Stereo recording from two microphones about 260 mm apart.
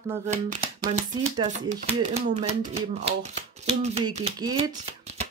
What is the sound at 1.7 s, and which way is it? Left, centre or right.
Speech, right.